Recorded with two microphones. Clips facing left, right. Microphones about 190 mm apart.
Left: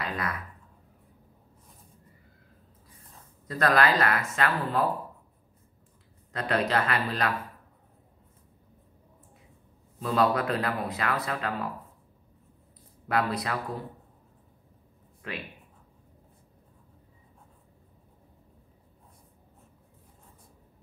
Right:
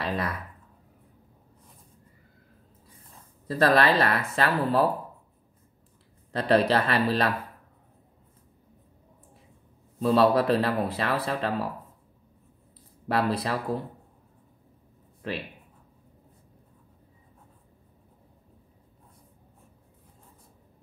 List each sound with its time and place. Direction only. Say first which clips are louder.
0.0 s a sound: right 4 dB; 30° right (ahead or behind)
3.4 s speech: right 3 dB; 30° right (ahead or behind)
6.3 s speech: right 5 dB; 35° right (ahead or behind)
9.9 s speech: right 5 dB; 30° right (ahead or behind)
13.1 s speech: right 2 dB; 30° right (ahead or behind)